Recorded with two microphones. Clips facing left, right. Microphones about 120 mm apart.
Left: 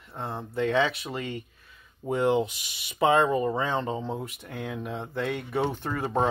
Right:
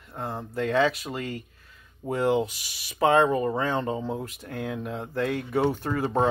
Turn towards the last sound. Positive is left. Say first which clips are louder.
# right 2 dB
turn(degrees=0)  # may be behind; listen again after turning